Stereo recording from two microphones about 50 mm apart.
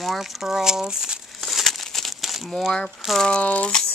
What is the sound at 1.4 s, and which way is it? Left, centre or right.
Crumpling, centre.